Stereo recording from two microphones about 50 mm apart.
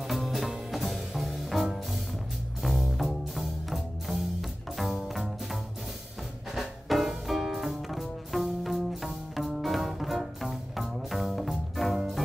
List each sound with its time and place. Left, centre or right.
0.1 s music: centre
6.5 s music: centre